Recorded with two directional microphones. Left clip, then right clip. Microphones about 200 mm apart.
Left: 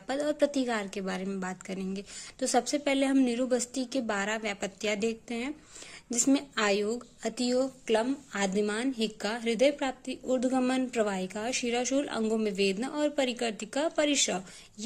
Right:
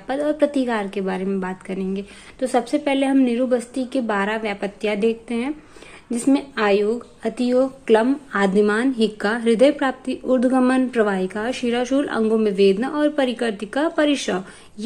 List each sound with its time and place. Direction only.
0.0 s a woman's voice: 35° left (ahead or behind)